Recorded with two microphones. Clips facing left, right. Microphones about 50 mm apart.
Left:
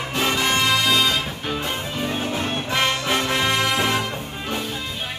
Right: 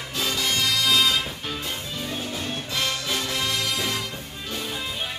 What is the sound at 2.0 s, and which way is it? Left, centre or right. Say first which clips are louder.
Music: left 8 dB; left.